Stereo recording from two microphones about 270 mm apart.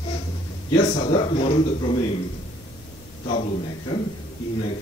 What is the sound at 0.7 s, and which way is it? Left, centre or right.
A man's voice, left.